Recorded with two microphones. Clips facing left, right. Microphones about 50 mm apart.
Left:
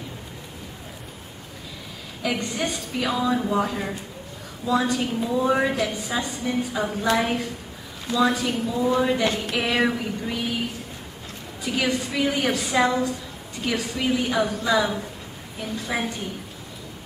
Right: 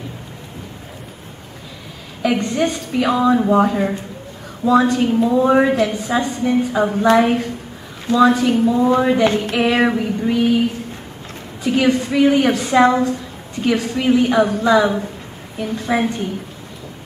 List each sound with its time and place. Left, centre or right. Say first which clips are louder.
2.5 s speech: right 8 dB; centre
3.2 s a woman's voice: right 9 dB; right
9.5 s a woman's voice: right 7 dB; centre
11.7 s a woman's voice: right 9 dB; centre
13.7 s speech: right 8 dB; centre
13.9 s speech: right 8 dB; centre